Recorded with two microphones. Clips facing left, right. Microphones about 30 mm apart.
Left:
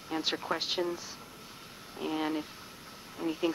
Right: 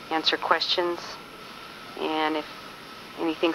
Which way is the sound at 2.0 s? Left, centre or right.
Right.